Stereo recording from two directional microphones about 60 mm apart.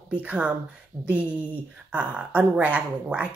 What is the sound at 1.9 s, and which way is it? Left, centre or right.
Speech, centre.